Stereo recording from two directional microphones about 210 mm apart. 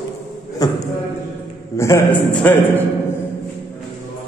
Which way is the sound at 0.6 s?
15° left (ahead or behind).